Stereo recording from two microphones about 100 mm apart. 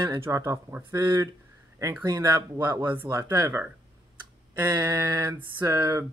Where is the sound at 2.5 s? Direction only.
25° right (ahead or behind).